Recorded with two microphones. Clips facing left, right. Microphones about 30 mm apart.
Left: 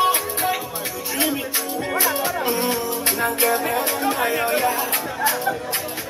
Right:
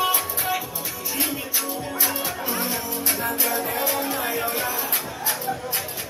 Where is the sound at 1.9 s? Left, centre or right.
Left.